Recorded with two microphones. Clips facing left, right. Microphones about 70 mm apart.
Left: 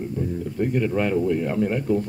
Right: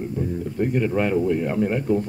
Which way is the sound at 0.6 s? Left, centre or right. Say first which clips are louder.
Right 1 dB; centre.